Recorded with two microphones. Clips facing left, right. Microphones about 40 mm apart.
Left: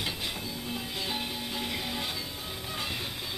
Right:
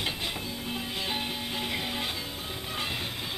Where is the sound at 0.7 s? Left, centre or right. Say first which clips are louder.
Right 2 dB; centre.